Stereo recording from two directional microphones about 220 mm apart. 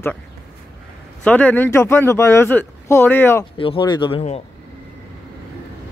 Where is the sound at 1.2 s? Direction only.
5° left (ahead or behind).